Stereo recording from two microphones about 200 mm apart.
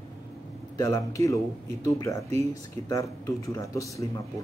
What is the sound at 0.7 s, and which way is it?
A man's voice, 15° left (ahead or behind).